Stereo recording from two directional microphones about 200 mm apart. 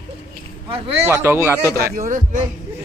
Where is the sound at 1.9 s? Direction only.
40° right (ahead or behind).